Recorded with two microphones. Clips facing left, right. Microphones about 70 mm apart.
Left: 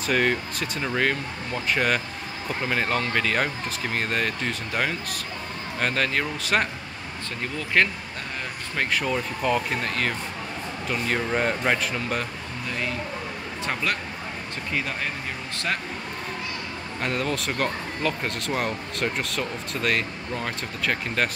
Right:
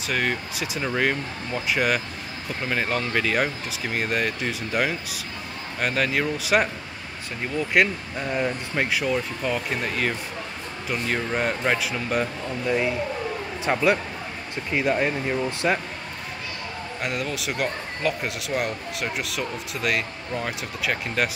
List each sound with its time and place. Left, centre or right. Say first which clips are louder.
0.0 s speech: left 3 dB; centre
12.6 s speech: right 6 dB; centre
17.0 s speech: left 2 dB; centre